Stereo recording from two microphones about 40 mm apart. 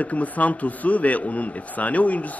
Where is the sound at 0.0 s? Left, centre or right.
Left.